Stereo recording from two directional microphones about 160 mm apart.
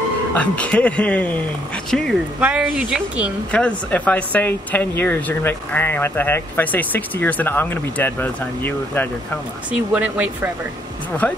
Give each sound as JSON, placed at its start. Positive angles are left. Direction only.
{"t": 0.3, "sound": "speech", "side_deg": 10}
{"t": 2.4, "sound": "speech", "side_deg": -5}
{"t": 3.5, "sound": "speech", "side_deg": 10}
{"t": 9.7, "sound": "speech", "side_deg": -10}